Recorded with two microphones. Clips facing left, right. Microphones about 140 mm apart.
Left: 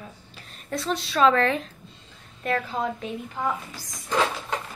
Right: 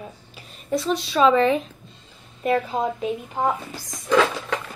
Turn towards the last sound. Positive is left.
turn(degrees=-90)